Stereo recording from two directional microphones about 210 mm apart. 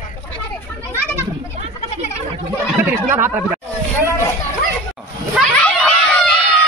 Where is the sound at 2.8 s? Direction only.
10° right (ahead or behind).